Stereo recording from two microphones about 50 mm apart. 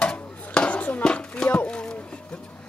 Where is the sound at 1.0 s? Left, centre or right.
Centre.